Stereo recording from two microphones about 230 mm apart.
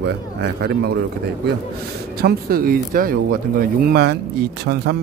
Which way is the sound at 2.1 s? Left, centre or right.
Right.